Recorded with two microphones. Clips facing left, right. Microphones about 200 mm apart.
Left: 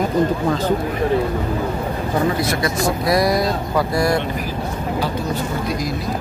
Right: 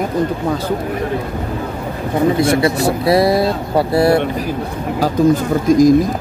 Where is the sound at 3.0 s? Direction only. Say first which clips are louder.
Right 5 dB; 30° right (ahead or behind).